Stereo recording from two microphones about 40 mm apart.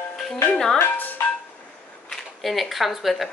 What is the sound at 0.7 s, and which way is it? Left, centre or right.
Speech, left.